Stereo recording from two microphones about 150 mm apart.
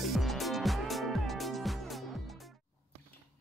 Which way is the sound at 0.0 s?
Centre (ahead or behind).